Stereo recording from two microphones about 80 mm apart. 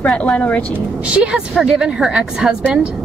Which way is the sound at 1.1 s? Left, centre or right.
Centre.